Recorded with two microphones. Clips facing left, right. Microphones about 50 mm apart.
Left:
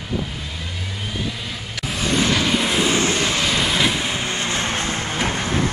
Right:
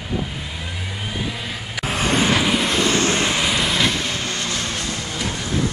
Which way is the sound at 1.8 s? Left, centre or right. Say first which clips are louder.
Right 1 dB; centre.